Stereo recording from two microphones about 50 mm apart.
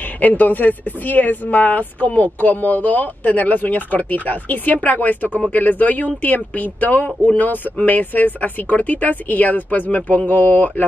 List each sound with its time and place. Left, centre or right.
0.2 s speech: left